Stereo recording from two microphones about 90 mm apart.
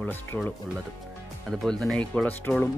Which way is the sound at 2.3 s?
20° left (ahead or behind).